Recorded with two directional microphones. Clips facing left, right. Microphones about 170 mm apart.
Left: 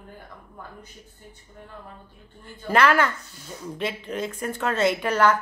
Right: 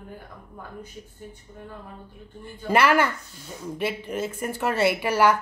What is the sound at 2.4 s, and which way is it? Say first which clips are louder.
Speech: even; 10° right (ahead or behind).